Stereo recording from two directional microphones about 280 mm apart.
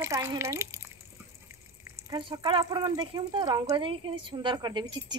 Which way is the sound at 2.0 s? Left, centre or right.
Centre.